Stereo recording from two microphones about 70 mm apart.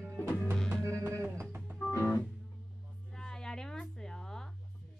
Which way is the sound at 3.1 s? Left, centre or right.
Centre.